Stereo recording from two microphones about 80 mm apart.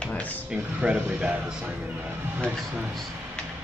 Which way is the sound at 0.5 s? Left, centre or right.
Centre.